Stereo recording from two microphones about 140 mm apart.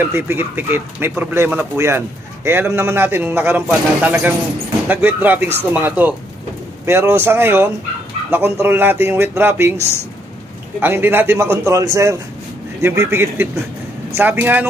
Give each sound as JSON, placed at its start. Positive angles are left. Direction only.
{"t": 0.0, "sound": "a man's voice", "side_deg": -15}
{"t": 9.8, "sound": "speech", "side_deg": 20}
{"t": 10.8, "sound": "a man's voice", "side_deg": -15}